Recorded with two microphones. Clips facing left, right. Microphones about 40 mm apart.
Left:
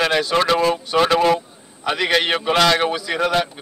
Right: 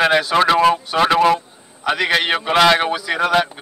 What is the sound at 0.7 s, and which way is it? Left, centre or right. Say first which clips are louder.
A man's voice: right 1 dB; centre.